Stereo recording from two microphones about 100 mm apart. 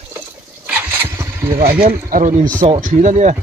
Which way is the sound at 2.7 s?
90° right.